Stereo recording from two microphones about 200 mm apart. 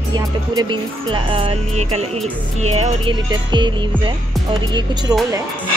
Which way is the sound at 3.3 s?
20° right (ahead or behind).